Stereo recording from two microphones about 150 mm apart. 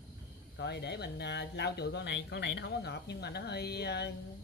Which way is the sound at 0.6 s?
90° left.